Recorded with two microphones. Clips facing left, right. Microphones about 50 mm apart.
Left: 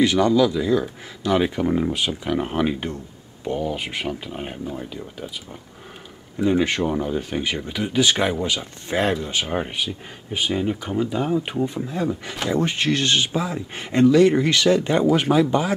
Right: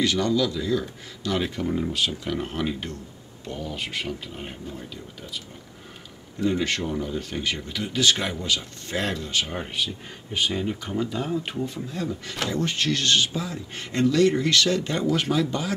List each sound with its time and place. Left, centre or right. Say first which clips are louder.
0.0 s speech: left 6 dB; centre
6.4 s speech: left 5 dB; centre
11.5 s speech: left 6 dB; centre